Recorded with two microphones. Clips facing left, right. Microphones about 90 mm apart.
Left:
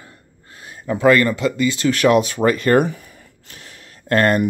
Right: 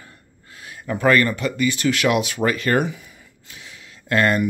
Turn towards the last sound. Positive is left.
turn(degrees=45)  # may be behind; listen again after turning